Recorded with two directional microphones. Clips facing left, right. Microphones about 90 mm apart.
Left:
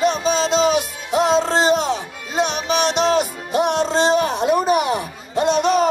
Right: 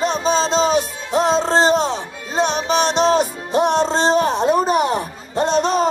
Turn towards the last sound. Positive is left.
turn(degrees=-35)  # may be behind; listen again after turning